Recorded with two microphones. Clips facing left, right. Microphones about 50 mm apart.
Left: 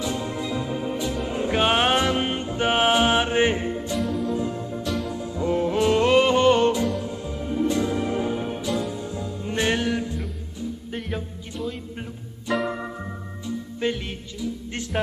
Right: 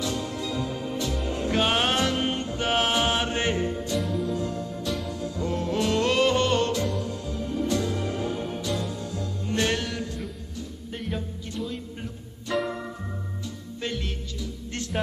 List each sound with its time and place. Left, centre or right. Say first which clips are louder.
0.0 s music: left 2 dB; centre
3.9 s music: left 4 dB; centre
4.4 s music: left 3 dB; centre
4.8 s music: left 3 dB; centre
5.2 s music: left 7 dB; centre
6.8 s music: left 3 dB; centre
7.2 s music: left 4 dB; centre
8.6 s music: left 4 dB; centre
8.9 s music: left 2 dB; centre
13.8 s music: left 6 dB; centre